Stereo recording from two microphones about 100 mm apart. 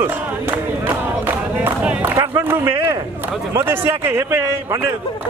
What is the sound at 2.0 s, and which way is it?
A man's voice, 25° right (ahead or behind).